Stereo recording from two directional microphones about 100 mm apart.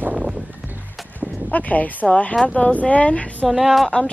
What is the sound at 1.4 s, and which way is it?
Speech, 15° left (ahead or behind).